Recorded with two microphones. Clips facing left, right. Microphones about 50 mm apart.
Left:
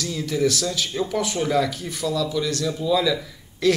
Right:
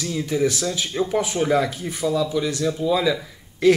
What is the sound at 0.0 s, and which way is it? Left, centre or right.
Speech, centre.